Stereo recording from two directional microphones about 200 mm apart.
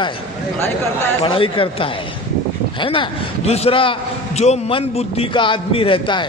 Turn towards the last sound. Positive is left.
turn(degrees=25)  # may be behind; listen again after turning